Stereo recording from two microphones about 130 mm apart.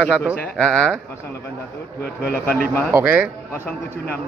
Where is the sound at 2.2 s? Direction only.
10° left (ahead or behind).